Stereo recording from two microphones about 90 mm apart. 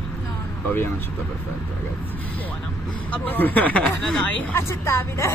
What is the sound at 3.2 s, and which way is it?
Speech, 20° left (ahead or behind).